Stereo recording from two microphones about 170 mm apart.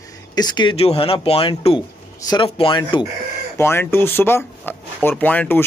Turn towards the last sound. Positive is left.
turn(degrees=10)  # may be behind; listen again after turning